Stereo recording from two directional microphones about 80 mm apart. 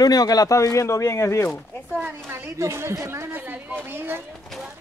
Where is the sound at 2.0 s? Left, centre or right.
Right.